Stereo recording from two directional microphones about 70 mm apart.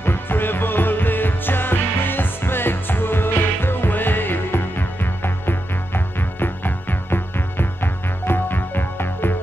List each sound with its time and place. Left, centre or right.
0.0 s music: left